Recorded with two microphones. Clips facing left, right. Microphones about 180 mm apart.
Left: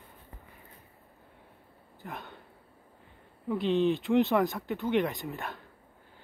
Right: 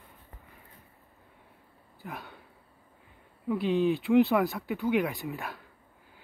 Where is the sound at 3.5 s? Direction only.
5° right (ahead or behind).